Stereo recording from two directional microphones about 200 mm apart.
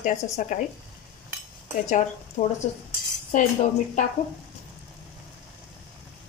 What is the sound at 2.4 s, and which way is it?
Speech, 40° left (ahead or behind).